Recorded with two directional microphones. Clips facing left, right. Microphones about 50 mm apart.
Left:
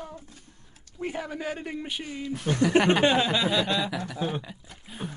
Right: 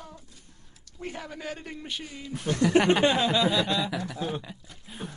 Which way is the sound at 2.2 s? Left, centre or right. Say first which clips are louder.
Left 2 dB; centre.